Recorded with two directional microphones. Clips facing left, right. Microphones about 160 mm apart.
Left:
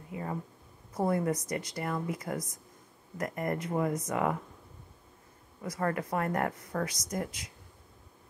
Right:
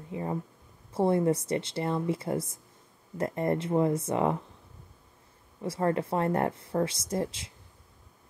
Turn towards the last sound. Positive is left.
turn(degrees=-30)  # may be behind; listen again after turning